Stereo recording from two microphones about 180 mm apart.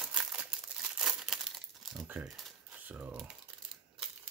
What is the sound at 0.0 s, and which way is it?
Crumpling, centre (ahead or behind).